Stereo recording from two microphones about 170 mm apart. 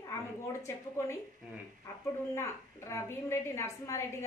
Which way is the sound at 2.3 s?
15° left (ahead or behind).